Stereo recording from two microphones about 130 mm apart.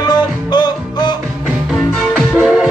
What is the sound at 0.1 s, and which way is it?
Music, 35° left (ahead or behind).